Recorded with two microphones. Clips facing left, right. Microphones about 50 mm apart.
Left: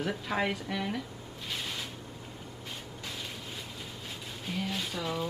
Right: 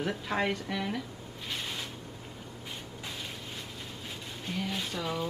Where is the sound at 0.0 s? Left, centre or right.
Centre.